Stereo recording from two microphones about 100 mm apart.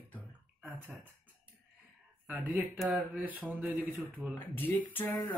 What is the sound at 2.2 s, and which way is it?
Speech, 15° right (ahead or behind).